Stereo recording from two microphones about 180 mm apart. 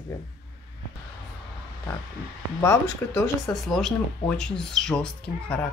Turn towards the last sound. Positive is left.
turn(degrees=5)  # may be behind; listen again after turning